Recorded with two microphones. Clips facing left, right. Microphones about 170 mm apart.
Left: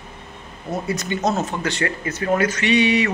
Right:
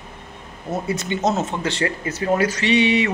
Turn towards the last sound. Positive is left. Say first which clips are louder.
# even
turn(degrees=-25)  # may be behind; listen again after turning